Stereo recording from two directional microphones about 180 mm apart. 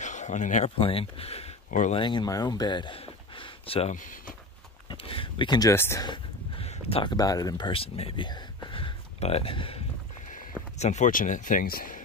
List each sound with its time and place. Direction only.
0.0 s a sound: 40° left (ahead or behind)
0.7 s speech: 30° left (ahead or behind)
2.0 s speech: 25° left (ahead or behind)
3.9 s speech: 45° left (ahead or behind)
4.8 s speech: 30° left (ahead or behind)
6.0 s speech: 30° left (ahead or behind)
10.8 s speech: 40° left (ahead or behind)